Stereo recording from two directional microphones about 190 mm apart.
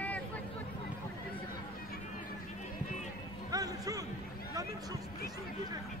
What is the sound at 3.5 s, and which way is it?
Music, 20° right (ahead or behind).